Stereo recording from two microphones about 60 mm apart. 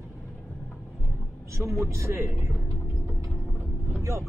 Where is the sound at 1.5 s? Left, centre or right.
Right.